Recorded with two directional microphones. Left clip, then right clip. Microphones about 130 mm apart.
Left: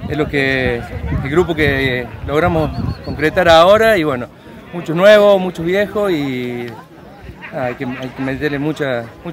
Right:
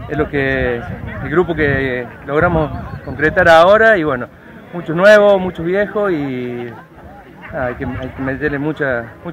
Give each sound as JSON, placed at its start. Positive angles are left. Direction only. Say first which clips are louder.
{"t": 0.1, "sound": "speech", "louder": "left 1 dB", "side_deg": 25}